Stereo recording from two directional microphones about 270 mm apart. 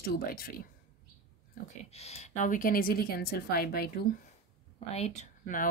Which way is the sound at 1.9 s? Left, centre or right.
Left.